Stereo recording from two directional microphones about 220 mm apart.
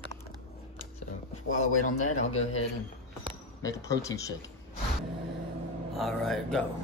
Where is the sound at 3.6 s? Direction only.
15° left (ahead or behind).